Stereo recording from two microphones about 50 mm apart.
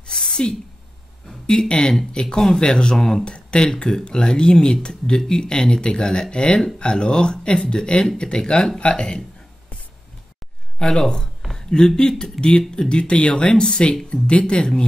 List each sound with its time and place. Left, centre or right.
0.0 s a sound: centre
1.5 s speech: centre
3.0 s speech: centre
3.3 s speech: centre
10.8 s speech: centre